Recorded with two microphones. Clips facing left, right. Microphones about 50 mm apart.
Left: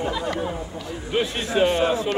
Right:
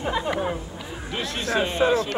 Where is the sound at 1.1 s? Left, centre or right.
Centre.